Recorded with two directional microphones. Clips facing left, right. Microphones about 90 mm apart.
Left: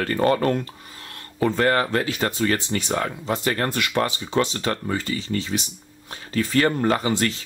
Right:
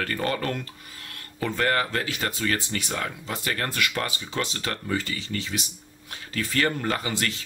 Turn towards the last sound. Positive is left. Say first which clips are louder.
# left 7 dB
turn(degrees=25)  # may be behind; listen again after turning